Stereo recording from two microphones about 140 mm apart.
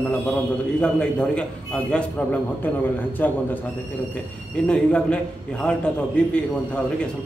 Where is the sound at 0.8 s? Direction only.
5° left (ahead or behind).